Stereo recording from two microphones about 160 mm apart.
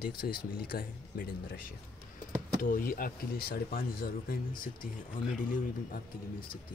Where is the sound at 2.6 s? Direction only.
60° left (ahead or behind).